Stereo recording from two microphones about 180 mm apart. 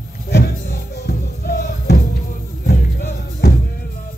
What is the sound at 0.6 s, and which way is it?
Music, 55° left (ahead or behind).